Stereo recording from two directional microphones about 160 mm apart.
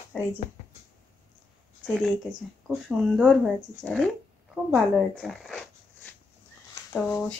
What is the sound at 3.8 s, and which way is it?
Speech, centre (ahead or behind).